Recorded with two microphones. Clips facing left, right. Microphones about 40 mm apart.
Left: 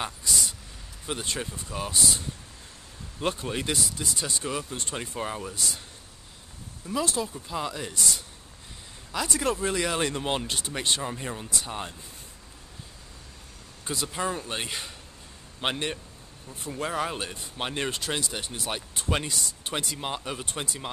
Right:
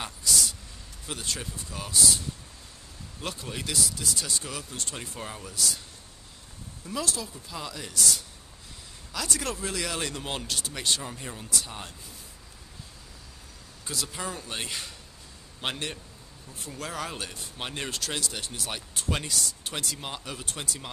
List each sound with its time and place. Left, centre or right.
0.0 s a sound: centre
1.0 s speech: left
7.1 s speech: left
13.8 s speech: centre